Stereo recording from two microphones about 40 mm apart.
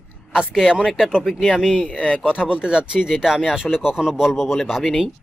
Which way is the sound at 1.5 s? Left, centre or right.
Centre.